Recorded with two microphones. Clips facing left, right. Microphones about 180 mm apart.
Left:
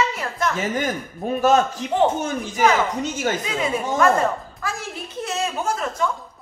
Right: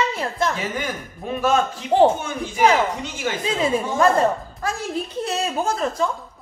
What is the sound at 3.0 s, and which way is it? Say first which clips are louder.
Speech: left 3 dB; 45° left (ahead or behind).